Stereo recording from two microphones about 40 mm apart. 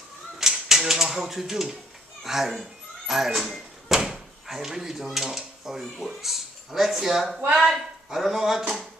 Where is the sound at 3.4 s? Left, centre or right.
Centre.